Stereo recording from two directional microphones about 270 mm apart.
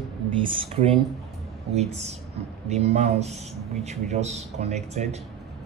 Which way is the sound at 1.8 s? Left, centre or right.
Right.